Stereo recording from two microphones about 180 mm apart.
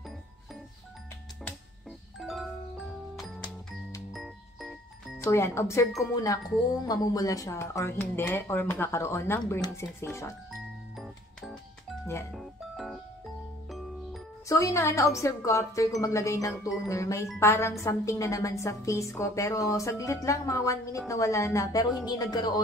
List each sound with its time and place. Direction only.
2.1 s music: centre (ahead or behind)
4.1 s music: centre (ahead or behind)
5.2 s speech: 15° left (ahead or behind)
10.5 s music: centre (ahead or behind)
14.5 s speech: 15° left (ahead or behind)